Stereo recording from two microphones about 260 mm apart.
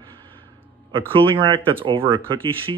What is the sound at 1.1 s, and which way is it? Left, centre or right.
Speech, centre.